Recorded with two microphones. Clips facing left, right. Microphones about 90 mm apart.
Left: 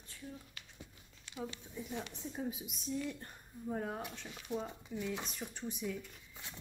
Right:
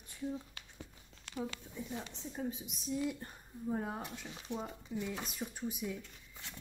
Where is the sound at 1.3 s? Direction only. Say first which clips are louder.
Right 5 dB; 80° right.